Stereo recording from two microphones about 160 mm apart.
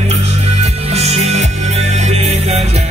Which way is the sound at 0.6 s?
40° right (ahead or behind).